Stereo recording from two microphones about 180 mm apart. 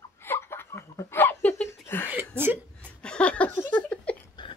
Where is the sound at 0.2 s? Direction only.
15° left (ahead or behind).